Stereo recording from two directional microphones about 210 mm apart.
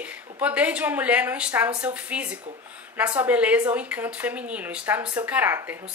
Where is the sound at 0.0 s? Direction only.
5° right (ahead or behind).